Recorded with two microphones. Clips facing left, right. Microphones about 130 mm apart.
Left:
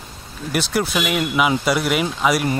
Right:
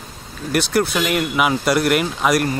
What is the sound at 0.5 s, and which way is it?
Speech, centre (ahead or behind).